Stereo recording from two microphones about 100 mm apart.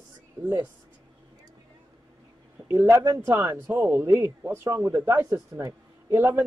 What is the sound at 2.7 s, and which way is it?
Speech, 20° right (ahead or behind).